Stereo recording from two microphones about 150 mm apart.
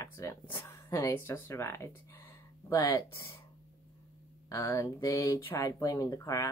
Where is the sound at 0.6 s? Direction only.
20° left (ahead or behind).